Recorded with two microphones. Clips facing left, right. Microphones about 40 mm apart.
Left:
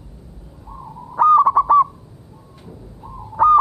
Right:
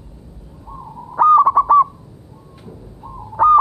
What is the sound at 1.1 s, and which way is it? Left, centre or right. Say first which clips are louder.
Owl: right 1 dB; centre.